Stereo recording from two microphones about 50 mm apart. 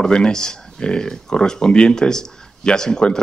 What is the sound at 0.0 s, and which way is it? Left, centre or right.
Speech, centre.